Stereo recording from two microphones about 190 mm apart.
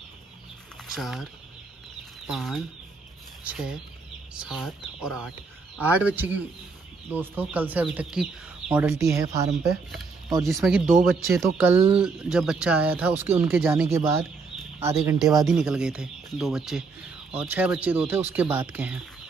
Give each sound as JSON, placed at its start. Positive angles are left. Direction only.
{"t": 0.8, "sound": "speech", "side_deg": 0}
{"t": 10.4, "sound": "speech", "side_deg": 0}
{"t": 11.5, "sound": "speech", "side_deg": -10}
{"t": 15.1, "sound": "speech", "side_deg": 0}